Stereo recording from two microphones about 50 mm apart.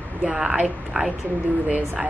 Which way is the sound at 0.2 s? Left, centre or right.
Centre.